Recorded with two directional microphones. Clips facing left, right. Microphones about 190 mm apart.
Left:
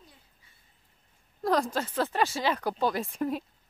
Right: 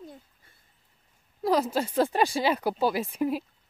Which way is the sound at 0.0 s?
50° right (ahead or behind).